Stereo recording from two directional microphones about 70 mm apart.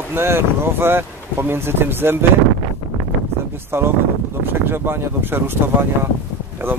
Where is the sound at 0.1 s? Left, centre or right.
Right.